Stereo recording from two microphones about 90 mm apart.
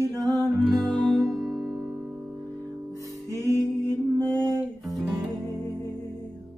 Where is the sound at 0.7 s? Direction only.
Centre (ahead or behind).